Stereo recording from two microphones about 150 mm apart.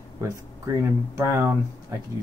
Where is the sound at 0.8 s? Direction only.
15° right (ahead or behind).